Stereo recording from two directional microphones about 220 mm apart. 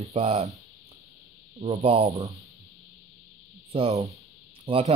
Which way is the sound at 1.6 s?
25° right (ahead or behind).